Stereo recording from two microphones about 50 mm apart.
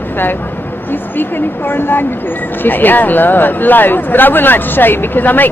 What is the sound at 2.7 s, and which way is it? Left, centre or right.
Speech, left.